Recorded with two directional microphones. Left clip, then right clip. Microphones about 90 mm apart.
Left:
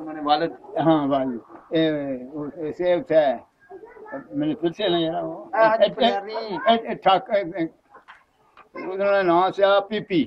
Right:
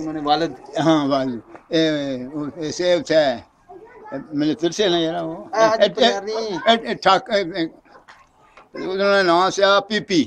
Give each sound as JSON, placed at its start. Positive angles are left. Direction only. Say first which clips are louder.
{"t": 0.1, "sound": "speech", "louder": "right 1 dB", "side_deg": -75}
{"t": 0.7, "sound": "a man's voice", "louder": "right 2 dB", "side_deg": -30}
{"t": 5.5, "sound": "speech", "louder": "right 1 dB", "side_deg": -65}
{"t": 5.8, "sound": "a man's voice", "louder": "right 3 dB", "side_deg": -30}
{"t": 6.1, "sound": "speech", "louder": "right 3 dB", "side_deg": -70}
{"t": 6.6, "sound": "a man's voice", "louder": "right 2 dB", "side_deg": -25}
{"t": 8.8, "sound": "a man's voice", "louder": "right 3 dB", "side_deg": -20}